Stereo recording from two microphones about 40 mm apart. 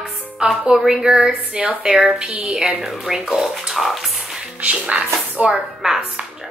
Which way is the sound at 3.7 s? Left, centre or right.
Centre.